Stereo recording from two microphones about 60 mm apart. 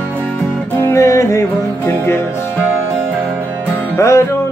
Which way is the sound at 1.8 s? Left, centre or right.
Left.